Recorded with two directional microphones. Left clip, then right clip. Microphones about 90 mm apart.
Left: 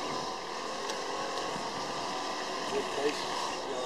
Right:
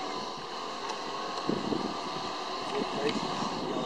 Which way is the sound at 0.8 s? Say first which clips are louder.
Even; 40° left (ahead or behind).